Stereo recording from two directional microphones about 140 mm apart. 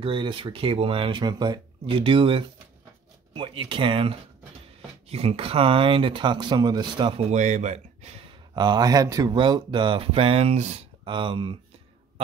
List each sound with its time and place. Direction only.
0.0 s speech: 35° right (ahead or behind)
7.2 s speech: 55° right (ahead or behind)
8.5 s speech: 30° right (ahead or behind); by 10.9 s 50° right (ahead or behind)
11.1 s speech: 35° right (ahead or behind)